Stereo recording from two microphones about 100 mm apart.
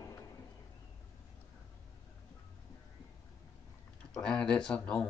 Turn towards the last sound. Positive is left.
turn(degrees=10)  # may be behind; listen again after turning